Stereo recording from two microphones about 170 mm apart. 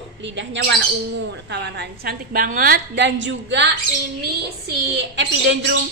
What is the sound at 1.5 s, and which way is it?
A woman's voice, 75° right (ahead or behind).